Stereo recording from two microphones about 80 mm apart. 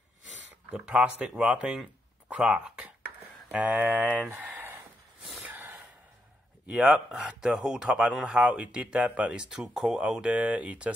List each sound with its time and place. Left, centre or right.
0.7 s a man's voice: centre
5.4 s snort: right
6.7 s a man's voice: centre